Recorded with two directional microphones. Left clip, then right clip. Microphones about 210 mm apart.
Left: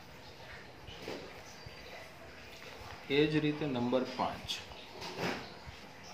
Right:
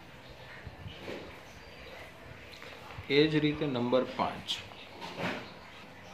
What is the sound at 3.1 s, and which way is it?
Speech, 15° right (ahead or behind).